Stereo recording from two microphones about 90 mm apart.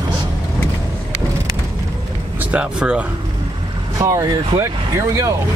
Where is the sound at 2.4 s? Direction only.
15° right (ahead or behind).